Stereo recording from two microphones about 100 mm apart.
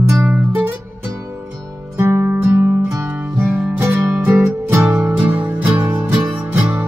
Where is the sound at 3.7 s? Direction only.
20° right (ahead or behind).